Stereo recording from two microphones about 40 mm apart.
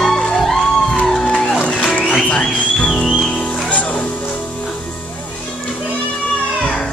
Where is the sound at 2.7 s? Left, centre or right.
Centre; by 4.1 s left.